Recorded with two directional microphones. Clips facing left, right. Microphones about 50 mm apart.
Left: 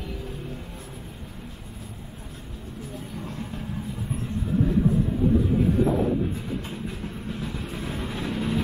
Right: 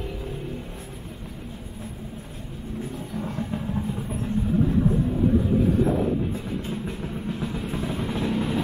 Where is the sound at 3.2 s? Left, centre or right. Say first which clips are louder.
Right 7 dB; right.